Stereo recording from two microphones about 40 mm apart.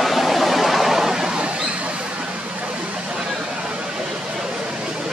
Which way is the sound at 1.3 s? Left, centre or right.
Right.